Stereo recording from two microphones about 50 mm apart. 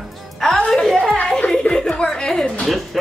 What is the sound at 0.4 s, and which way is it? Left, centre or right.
Speech, centre.